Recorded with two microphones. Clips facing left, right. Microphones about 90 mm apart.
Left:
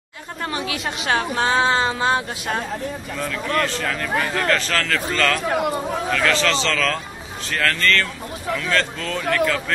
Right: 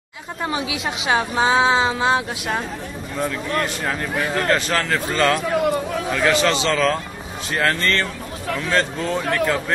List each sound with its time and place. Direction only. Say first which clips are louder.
0.4 s a woman's voice: right 2 dB; 10° right (ahead or behind)
3.2 s speech: even; 20° right (ahead or behind)